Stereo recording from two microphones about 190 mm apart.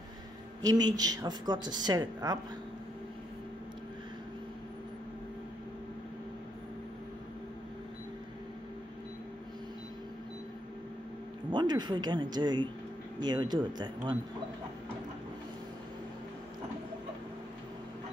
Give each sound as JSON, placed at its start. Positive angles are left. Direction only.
{"t": 0.6, "sound": "a woman's voice", "side_deg": -20}
{"t": 11.5, "sound": "a woman's voice", "side_deg": -25}